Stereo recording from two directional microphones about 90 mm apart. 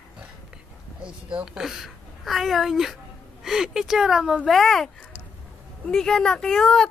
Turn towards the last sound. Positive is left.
turn(degrees=5)  # may be behind; listen again after turning